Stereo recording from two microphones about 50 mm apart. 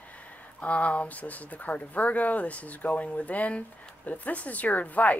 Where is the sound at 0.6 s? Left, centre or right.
Left.